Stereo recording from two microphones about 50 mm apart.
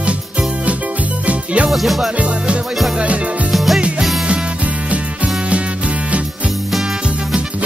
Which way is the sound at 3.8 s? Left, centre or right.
Right.